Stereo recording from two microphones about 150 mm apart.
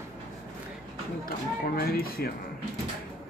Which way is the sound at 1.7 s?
85° left.